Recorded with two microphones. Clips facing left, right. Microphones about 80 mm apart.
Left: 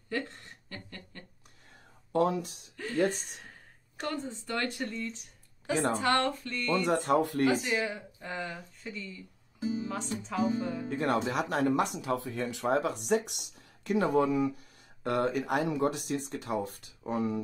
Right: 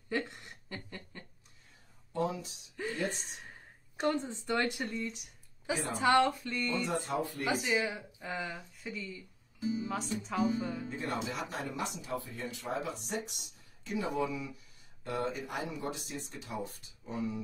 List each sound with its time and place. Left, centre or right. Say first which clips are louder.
0.1 s a sound: even; centre
2.1 s speech: left 7 dB; left
4.0 s speech: right 3 dB; right
5.7 s speech: left 6 dB; left
5.9 s speech: right 1 dB; centre
6.7 s speech: left 9 dB; left
7.5 s speech: left 1 dB; centre
9.6 s music: left 2 dB; left
10.5 s speech: left 3 dB; centre
10.9 s speech: left 7 dB; left
15.0 s speech: left 7 dB; left